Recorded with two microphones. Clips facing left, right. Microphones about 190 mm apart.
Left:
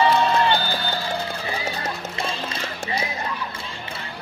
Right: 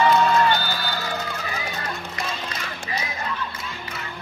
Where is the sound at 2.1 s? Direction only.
30° left (ahead or behind).